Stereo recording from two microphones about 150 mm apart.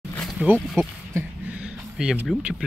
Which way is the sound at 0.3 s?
5° right (ahead or behind).